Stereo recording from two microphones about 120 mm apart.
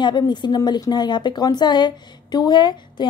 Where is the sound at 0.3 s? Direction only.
35° left (ahead or behind).